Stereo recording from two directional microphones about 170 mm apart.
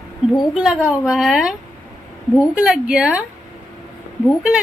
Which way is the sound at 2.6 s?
5° right (ahead or behind).